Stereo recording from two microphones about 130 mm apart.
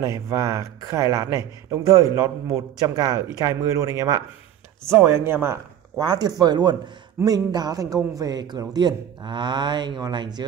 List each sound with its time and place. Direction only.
0.0 s speech: 20° right (ahead or behind)
5.9 s speech: 30° right (ahead or behind)